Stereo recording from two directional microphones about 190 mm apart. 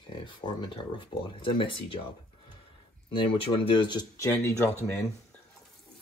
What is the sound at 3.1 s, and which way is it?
Speech, 30° left (ahead or behind).